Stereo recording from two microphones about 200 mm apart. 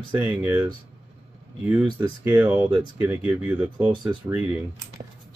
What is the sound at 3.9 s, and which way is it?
Speech, 25° right (ahead or behind).